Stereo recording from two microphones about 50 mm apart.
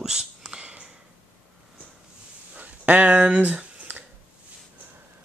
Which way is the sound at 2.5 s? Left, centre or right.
Right.